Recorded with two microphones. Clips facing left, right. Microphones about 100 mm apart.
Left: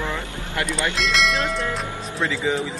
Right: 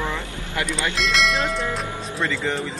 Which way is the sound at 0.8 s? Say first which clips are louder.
Even; centre (ahead or behind).